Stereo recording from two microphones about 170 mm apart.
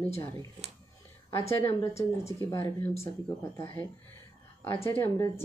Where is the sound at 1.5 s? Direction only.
15° left (ahead or behind).